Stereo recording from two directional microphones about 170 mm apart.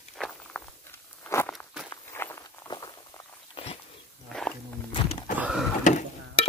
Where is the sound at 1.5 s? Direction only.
5° right (ahead or behind).